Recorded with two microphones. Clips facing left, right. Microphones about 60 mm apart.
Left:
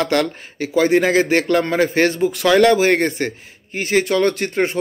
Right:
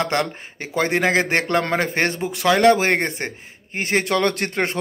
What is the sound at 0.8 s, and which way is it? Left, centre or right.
Speech, right.